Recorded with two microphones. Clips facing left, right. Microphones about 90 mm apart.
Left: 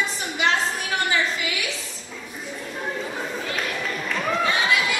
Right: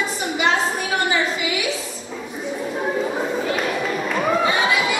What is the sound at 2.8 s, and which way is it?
Chatter, 30° right (ahead or behind).